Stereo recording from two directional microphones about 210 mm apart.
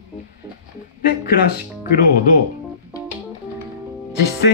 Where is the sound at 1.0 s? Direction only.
45° left (ahead or behind).